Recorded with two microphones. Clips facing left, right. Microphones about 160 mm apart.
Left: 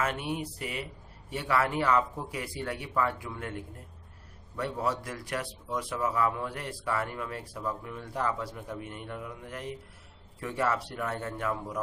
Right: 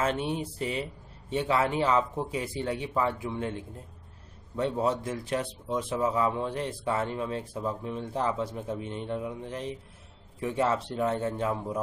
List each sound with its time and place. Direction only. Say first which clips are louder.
0.0 s a man's voice: right 3 dB; 25° right (ahead or behind)